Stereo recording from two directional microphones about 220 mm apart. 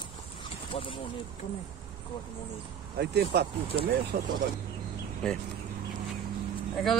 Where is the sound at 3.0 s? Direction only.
45° right (ahead or behind).